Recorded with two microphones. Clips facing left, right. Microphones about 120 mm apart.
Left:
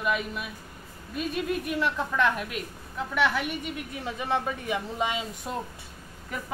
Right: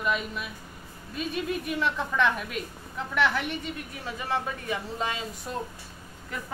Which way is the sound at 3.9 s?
20° left (ahead or behind).